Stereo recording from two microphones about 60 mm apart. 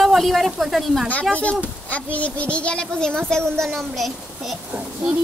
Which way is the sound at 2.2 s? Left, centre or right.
Left.